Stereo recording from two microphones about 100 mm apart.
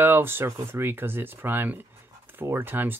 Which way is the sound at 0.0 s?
20° right (ahead or behind).